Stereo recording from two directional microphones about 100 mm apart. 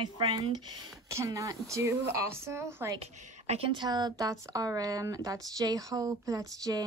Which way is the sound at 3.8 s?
45° right (ahead or behind).